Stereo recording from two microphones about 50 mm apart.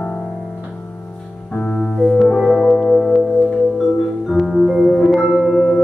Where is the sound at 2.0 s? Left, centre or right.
Centre.